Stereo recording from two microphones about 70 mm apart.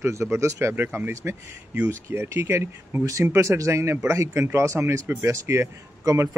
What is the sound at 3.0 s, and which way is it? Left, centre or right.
Speech, right.